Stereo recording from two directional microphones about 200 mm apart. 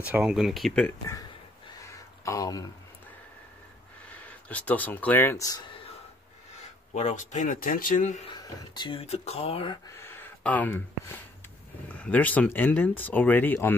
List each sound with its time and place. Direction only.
0.0 s speech: 5° right (ahead or behind)
2.2 s speech: 15° left (ahead or behind)
4.2 s speech: 5° left (ahead or behind)
6.9 s speech: 35° left (ahead or behind)
8.7 s speech: 25° left (ahead or behind)
9.9 s speech: 10° left (ahead or behind)